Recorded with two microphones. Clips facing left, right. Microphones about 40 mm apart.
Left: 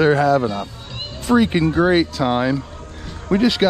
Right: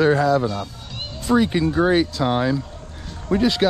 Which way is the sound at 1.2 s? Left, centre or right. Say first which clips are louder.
Left 2 dB; left.